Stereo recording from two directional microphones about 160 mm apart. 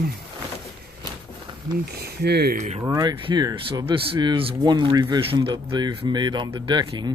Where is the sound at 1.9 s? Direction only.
85° right.